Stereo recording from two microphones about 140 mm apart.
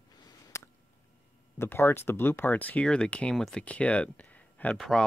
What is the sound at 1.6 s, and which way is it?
Speech, 15° left (ahead or behind).